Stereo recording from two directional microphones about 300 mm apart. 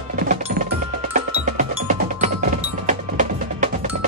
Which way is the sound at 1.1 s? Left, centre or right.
Right.